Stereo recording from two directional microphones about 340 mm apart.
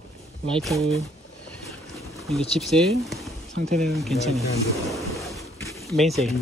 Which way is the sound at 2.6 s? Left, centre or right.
Centre.